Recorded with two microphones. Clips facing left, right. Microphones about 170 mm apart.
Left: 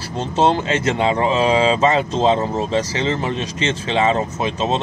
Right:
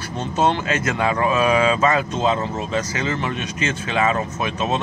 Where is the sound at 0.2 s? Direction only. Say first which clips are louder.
Left 3 dB; 30° left (ahead or behind).